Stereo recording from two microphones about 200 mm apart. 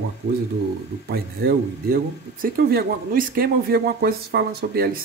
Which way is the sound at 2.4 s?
45° right (ahead or behind).